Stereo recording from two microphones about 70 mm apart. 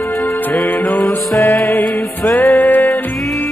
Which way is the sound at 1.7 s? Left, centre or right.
Centre.